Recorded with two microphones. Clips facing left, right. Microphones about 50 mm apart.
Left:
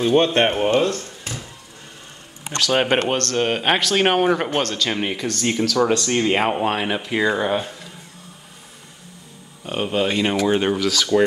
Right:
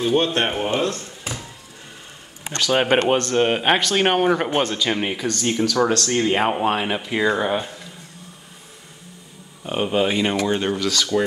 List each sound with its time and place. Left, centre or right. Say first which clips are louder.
0.1 s speech: left 4 dB; left
0.9 s a sound: even; centre
2.7 s speech: right 1 dB; centre
3.1 s speech: right 2 dB; centre
4.5 s speech: right 1 dB; centre
5.9 s speech: even; centre
9.7 s speech: right 1 dB; centre
10.4 s speech: left 3 dB; centre